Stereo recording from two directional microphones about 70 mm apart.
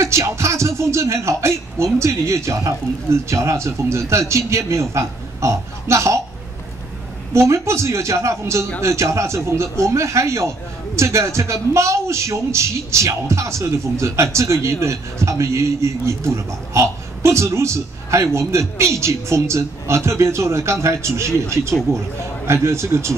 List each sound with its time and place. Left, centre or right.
0.0 s speech: right
7.3 s speech: right